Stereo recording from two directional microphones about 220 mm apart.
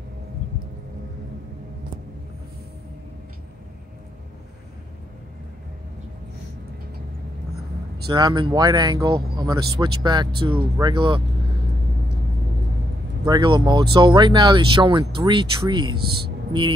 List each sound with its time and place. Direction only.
8.1 s speech: 20° right (ahead or behind)
13.2 s speech: 20° right (ahead or behind)
16.0 s speech: 45° right (ahead or behind)